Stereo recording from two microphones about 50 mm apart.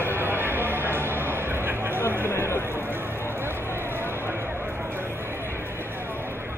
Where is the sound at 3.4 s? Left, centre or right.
Right.